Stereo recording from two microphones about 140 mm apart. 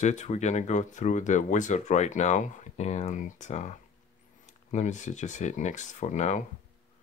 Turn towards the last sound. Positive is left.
turn(degrees=60)  # may be behind; listen again after turning